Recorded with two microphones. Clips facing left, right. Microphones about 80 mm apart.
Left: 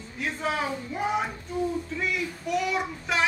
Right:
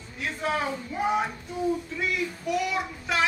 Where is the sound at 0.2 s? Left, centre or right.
Centre.